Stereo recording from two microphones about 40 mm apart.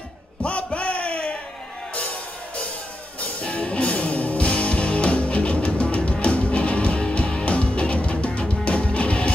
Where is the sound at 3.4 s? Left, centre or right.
Left.